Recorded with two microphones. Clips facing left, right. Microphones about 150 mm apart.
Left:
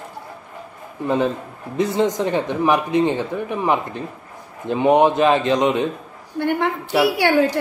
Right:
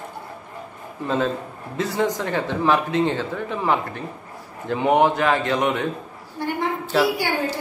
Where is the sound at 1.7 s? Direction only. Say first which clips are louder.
Left 4 dB; 20° left (ahead or behind).